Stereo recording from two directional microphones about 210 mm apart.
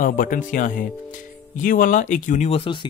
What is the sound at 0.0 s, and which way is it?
Speech, 40° left (ahead or behind).